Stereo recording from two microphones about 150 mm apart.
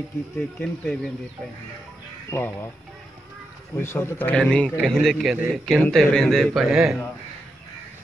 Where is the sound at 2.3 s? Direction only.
15° left (ahead or behind).